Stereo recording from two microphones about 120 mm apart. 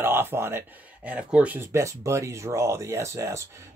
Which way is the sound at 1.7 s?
25° right (ahead or behind).